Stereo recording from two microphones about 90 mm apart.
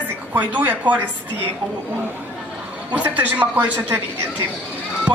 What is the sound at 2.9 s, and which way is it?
A woman's voice, 20° right (ahead or behind).